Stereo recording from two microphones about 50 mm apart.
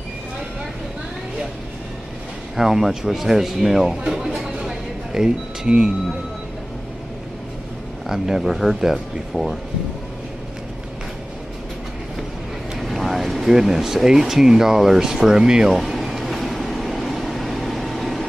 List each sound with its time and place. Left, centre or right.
2.5 s speech: centre
4.4 s a sound: centre
8.1 s speech: centre
12.7 s speech: centre
15.8 s vehicle: centre